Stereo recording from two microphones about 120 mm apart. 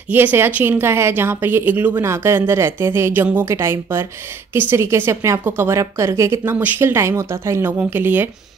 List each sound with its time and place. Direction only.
0.1 s a woman's voice: 15° right (ahead or behind)